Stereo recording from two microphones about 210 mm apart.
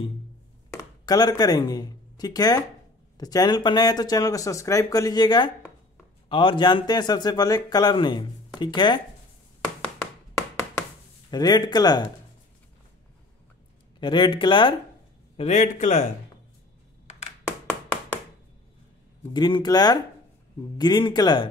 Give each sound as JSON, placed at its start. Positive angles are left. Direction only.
{"t": 0.7, "sound": "speech", "side_deg": 20}
{"t": 11.2, "sound": "speech", "side_deg": 20}
{"t": 13.9, "sound": "a man's voice", "side_deg": 25}
{"t": 19.3, "sound": "speech", "side_deg": 20}